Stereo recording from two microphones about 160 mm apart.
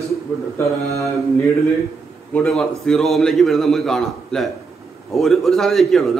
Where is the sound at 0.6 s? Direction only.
20° left (ahead or behind).